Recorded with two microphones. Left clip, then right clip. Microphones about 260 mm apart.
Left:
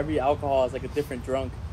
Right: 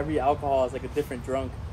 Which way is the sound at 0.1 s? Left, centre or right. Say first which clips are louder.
Even; centre.